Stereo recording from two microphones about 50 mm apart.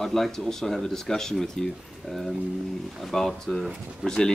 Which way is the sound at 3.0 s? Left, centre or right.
Centre.